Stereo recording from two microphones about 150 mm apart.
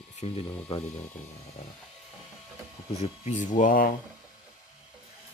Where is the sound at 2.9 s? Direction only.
45° left (ahead or behind); by 3.9 s 65° left (ahead or behind).